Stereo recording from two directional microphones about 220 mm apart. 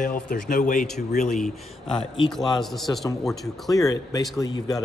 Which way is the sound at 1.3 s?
Centre (ahead or behind).